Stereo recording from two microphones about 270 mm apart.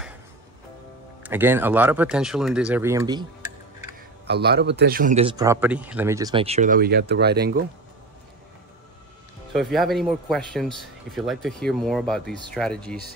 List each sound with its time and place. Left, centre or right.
1.2 s speech: centre
4.3 s a man's voice: right
5.4 s speech: centre; by 7.6 s right
9.5 s speech: centre